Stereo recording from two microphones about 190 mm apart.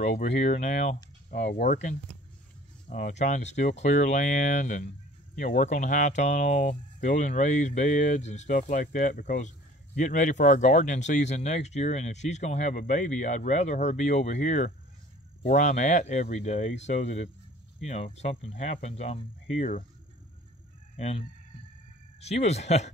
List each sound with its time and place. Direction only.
0.0 s speech: 40° left (ahead or behind)
1.3 s speech: 50° left (ahead or behind)
20.9 s fowl: 30° left (ahead or behind)
22.2 s speech: 35° left (ahead or behind)